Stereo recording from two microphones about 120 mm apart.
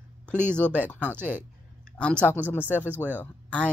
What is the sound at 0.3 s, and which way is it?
Speech, 10° left (ahead or behind).